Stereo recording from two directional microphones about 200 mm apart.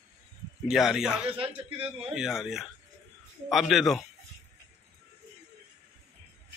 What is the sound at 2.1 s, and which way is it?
Speech, centre (ahead or behind).